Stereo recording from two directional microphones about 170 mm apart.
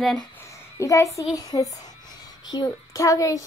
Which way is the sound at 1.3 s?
20° left (ahead or behind).